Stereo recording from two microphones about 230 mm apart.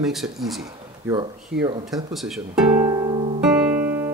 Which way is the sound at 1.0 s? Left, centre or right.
Centre.